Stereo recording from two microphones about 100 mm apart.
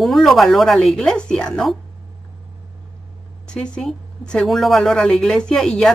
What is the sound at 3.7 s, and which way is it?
A woman's voice, 10° left (ahead or behind).